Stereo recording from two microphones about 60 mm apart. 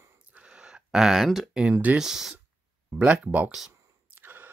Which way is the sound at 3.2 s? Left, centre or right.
Right.